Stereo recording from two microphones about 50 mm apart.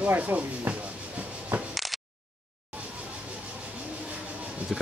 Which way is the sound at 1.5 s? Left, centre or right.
Right.